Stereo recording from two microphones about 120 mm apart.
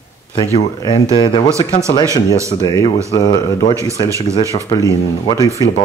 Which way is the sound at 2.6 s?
35° left (ahead or behind).